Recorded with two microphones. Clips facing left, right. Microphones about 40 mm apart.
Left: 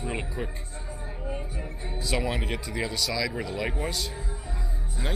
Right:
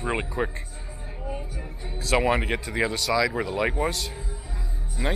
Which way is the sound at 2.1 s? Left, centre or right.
Right.